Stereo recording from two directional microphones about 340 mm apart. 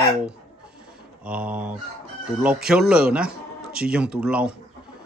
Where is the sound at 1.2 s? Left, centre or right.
Centre.